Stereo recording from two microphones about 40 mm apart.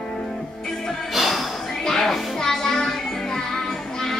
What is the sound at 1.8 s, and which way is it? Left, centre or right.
Music, centre.